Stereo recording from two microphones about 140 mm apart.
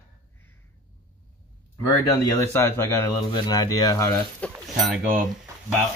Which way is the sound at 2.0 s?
20° left (ahead or behind).